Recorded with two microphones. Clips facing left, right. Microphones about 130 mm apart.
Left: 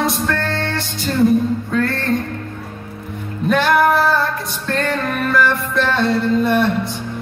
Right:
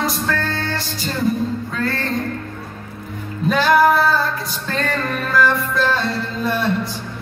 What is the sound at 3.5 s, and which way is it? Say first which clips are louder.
Music: even; centre (ahead or behind).